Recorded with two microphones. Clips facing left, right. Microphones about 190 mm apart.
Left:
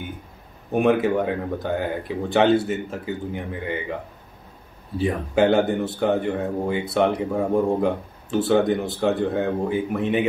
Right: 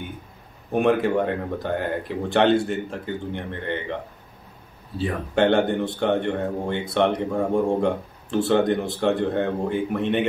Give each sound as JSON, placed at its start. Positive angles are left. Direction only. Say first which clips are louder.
{"t": 0.7, "sound": "speech", "louder": "left 1 dB", "side_deg": 0}
{"t": 4.9, "sound": "a man's voice", "louder": "left 2 dB", "side_deg": 15}